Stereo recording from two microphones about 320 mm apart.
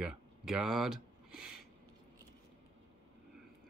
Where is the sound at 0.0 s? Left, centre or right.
Centre.